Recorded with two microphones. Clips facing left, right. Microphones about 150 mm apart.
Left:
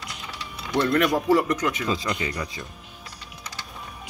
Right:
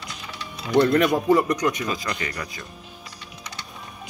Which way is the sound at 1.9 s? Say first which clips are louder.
Left 2 dB; 25° left (ahead or behind).